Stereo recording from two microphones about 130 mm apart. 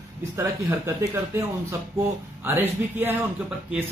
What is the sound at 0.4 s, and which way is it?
Speech, 20° right (ahead or behind).